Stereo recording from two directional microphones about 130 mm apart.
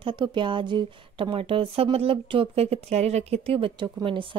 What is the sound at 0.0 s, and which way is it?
A woman's voice, 40° right (ahead or behind).